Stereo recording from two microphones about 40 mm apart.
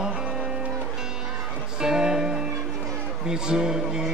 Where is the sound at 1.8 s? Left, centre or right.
Centre.